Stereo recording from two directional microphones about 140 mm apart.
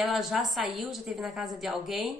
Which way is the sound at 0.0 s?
Centre (ahead or behind).